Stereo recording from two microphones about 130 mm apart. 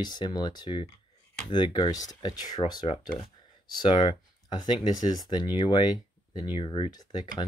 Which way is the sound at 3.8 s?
45° left (ahead or behind).